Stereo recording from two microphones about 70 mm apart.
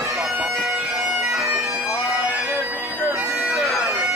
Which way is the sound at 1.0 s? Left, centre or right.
Centre.